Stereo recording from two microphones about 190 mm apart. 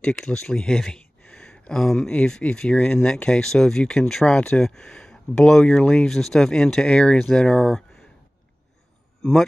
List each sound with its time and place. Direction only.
0.0 s speech: 5° left (ahead or behind)